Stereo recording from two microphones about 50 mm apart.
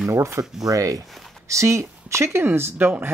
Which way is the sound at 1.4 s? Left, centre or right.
Right.